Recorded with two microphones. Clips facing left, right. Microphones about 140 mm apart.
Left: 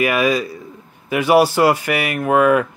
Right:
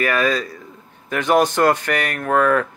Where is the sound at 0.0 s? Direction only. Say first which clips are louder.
Left 2 dB; 10° left (ahead or behind).